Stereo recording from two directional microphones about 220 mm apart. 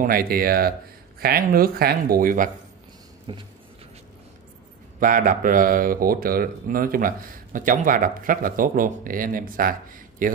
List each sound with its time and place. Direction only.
0.0 s speech: 40° right (ahead or behind)
5.0 s speech: 40° right (ahead or behind)